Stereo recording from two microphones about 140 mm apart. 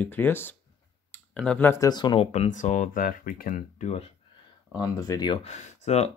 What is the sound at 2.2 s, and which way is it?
Speech, 50° left (ahead or behind).